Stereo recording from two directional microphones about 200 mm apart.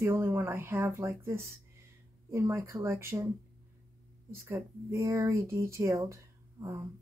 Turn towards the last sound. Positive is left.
turn(degrees=-15)  # may be behind; listen again after turning